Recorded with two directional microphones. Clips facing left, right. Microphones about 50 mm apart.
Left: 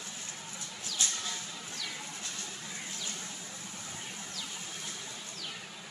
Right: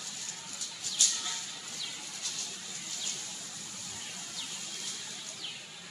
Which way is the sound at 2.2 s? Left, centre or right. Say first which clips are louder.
Left 1 dB; left.